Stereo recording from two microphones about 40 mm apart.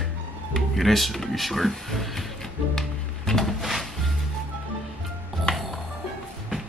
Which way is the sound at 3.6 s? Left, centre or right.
Centre.